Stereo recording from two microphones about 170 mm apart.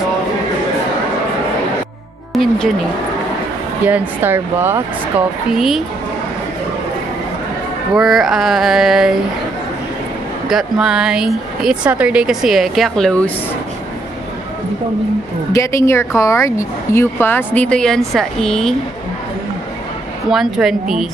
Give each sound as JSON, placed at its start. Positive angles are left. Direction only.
{"t": 2.3, "sound": "music", "side_deg": 0}
{"t": 3.8, "sound": "speech", "side_deg": -10}
{"t": 5.5, "sound": "speech", "side_deg": 0}
{"t": 7.9, "sound": "speech", "side_deg": 0}
{"t": 10.5, "sound": "speech", "side_deg": -5}
{"t": 15.5, "sound": "speech", "side_deg": 15}
{"t": 20.2, "sound": "speech", "side_deg": 0}